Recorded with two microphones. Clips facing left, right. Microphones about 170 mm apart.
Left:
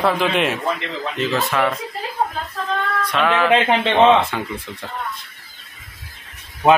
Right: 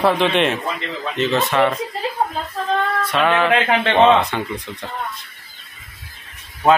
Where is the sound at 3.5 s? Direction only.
20° left (ahead or behind).